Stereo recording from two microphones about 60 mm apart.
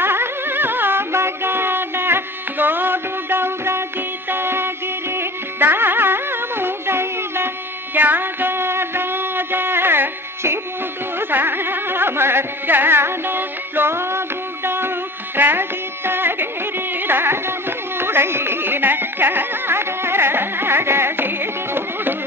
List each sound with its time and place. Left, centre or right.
0.0 s music: right
11.1 s carnatic music: right
15.3 s music: right
16.1 s carnatic music: right